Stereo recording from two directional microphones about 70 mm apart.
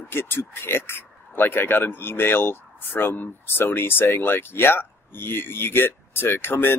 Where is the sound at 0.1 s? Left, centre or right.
Left.